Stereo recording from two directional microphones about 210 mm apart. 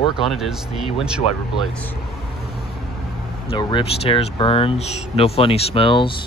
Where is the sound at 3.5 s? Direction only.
25° left (ahead or behind).